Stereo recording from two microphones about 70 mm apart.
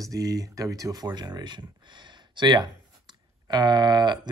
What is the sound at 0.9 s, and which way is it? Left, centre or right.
Speech, right.